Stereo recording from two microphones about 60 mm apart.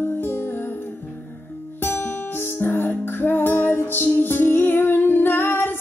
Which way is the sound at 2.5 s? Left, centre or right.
Left.